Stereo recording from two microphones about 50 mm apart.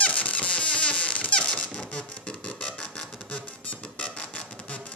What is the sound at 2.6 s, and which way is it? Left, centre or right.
Music, centre.